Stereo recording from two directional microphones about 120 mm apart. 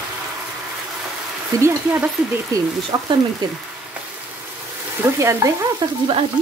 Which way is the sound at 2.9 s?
35° right (ahead or behind).